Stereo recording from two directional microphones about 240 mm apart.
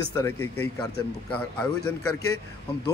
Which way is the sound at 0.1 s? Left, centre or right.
Centre.